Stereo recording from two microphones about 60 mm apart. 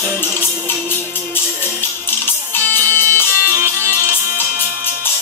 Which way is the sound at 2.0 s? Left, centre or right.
Left.